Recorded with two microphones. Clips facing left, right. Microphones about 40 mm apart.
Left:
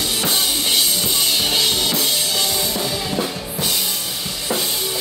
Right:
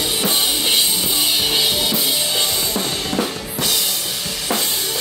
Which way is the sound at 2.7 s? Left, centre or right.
Right.